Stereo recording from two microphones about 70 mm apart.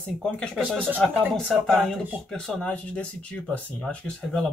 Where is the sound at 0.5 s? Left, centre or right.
Centre.